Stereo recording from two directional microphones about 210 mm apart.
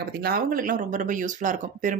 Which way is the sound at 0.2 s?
45° right (ahead or behind).